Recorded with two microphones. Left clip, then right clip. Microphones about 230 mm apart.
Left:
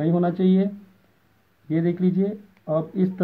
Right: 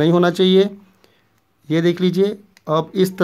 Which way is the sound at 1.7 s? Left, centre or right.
Right.